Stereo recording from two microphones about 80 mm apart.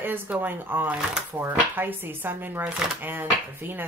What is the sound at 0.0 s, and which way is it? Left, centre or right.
Speech, right.